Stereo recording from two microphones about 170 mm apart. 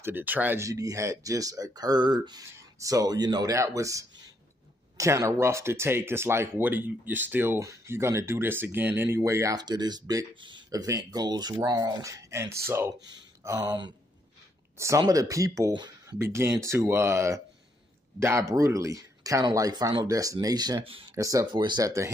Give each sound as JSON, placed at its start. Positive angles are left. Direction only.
{"t": 0.0, "sound": "speech", "side_deg": -10}